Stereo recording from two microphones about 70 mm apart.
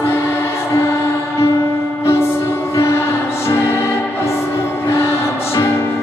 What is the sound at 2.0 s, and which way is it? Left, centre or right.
Music, left.